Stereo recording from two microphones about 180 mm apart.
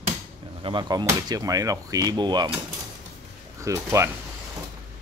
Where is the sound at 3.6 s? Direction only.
15° right (ahead or behind).